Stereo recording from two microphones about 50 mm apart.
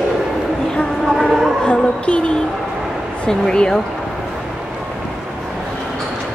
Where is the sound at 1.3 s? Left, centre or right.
Centre.